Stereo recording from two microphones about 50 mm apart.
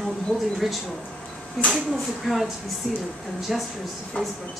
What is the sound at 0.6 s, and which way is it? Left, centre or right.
A woman's voice, centre.